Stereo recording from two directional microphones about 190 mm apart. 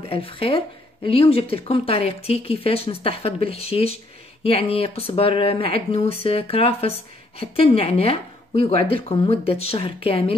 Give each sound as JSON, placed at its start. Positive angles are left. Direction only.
{"t": 0.1, "sound": "speech", "side_deg": 30}